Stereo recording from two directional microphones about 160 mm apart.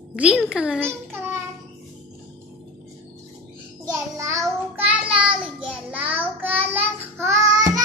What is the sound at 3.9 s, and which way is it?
Child singing, 20° right (ahead or behind).